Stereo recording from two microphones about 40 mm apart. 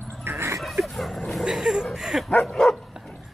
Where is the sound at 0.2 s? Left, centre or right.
Right.